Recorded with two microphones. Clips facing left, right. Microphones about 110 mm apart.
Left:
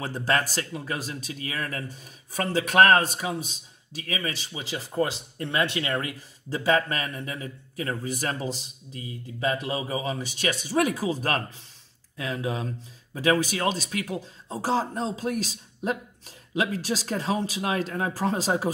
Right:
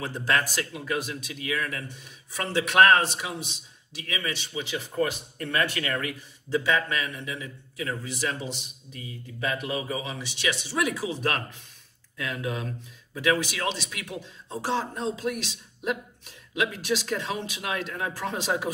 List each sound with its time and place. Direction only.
0.0 s speech: 35° left (ahead or behind)